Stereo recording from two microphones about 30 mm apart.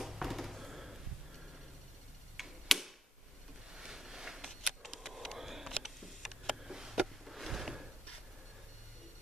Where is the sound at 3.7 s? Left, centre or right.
Centre.